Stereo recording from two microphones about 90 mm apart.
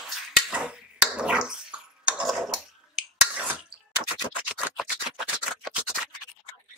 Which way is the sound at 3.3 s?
15° right (ahead or behind).